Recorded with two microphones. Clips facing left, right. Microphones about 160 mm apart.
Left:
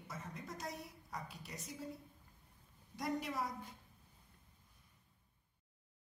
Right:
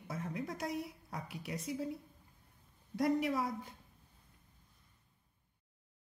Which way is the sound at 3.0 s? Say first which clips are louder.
Right 8 dB; 65° right (ahead or behind).